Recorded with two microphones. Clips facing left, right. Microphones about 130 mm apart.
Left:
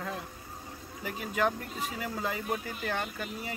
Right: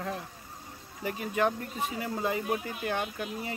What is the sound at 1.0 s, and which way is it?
Speech, 25° right (ahead or behind).